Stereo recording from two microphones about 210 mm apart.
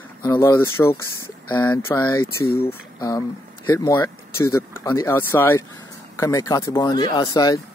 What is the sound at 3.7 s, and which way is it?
Speech, 10° left (ahead or behind).